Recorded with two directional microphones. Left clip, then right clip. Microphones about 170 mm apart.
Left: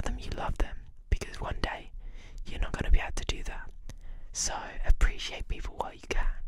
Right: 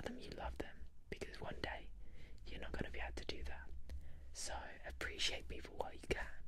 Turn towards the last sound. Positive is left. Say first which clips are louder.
# left 8 dB
turn(degrees=30)  # may be behind; listen again after turning